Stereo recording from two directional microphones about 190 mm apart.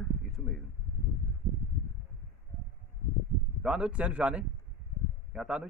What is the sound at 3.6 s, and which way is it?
A man's voice, 5° right (ahead or behind).